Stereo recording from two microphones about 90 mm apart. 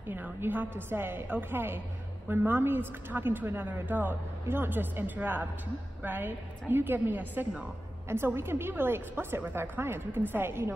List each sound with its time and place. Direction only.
0.1 s a woman's voice: 20° right (ahead or behind)